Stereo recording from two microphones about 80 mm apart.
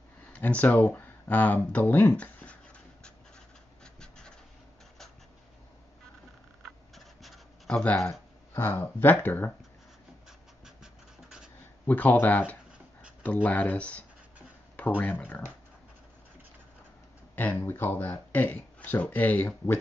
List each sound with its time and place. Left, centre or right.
0.3 s speech: centre
3.8 s scratch: centre
7.2 s a sound: centre
8.1 s speech: left
10.6 s scratch: centre
11.8 s speech: left
17.4 s speech: left